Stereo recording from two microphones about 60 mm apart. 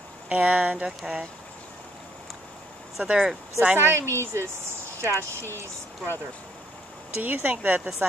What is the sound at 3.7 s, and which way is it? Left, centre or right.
Speech, right.